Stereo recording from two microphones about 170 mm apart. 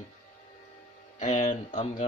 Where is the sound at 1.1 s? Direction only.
45° left (ahead or behind).